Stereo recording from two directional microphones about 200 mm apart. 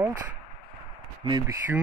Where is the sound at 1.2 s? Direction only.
20° right (ahead or behind).